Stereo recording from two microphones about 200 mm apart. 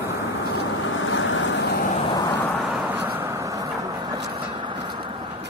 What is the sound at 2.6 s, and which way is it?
Vehicle, 5° right (ahead or behind).